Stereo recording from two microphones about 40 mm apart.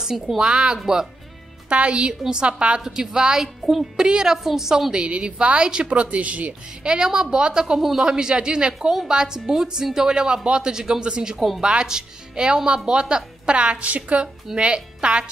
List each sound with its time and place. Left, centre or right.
0.4 s speech: right
2.8 s a woman's voice: centre
4.9 s speech: right
6.8 s a woman's voice: centre
10.4 s speech: right
10.7 s speech: centre
11.3 s speech: centre
11.6 s speech: right